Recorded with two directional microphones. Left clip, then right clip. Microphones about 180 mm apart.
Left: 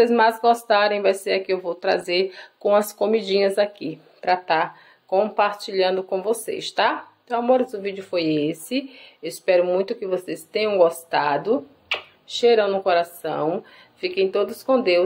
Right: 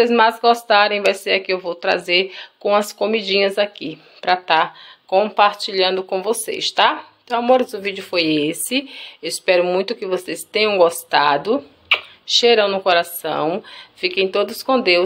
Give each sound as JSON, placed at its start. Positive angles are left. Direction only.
{"t": 0.0, "sound": "speech", "side_deg": 0}